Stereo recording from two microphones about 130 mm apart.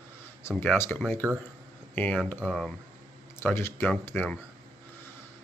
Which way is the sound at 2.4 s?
Centre (ahead or behind).